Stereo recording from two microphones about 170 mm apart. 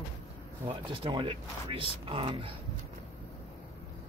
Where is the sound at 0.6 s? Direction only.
30° right (ahead or behind).